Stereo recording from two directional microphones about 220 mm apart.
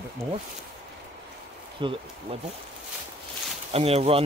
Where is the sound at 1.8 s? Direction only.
20° right (ahead or behind).